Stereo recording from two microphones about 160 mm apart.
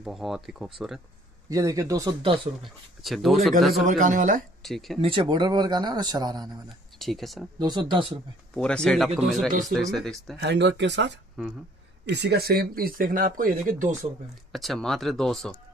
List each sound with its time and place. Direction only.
0.0 s speech: centre (ahead or behind)
1.5 s speech: 20° right (ahead or behind)
3.0 s speech: centre (ahead or behind)
3.8 s speech: 50° right (ahead or behind)
4.6 s speech: centre (ahead or behind)
5.0 s speech: 30° right (ahead or behind)
7.0 s speech: centre (ahead or behind)
7.5 s speech: 25° right (ahead or behind)
8.5 s speech: 5° left (ahead or behind)
10.4 s speech: 90° right; by 13.9 s 55° right (ahead or behind)
14.5 s speech: centre (ahead or behind)